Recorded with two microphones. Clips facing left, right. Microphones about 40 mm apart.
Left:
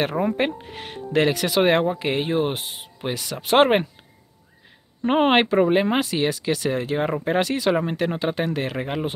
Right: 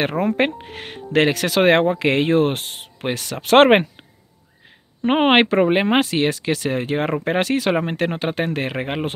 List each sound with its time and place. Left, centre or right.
0.0 s speech: right
2.0 s speech: right
5.0 s speech: right